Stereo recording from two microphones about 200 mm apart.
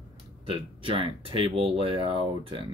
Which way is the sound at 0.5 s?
25° right (ahead or behind).